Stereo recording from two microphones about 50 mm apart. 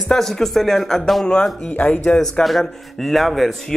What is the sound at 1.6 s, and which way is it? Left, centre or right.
Speech, left.